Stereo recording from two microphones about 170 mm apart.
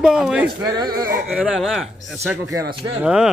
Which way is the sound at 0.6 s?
25° right (ahead or behind).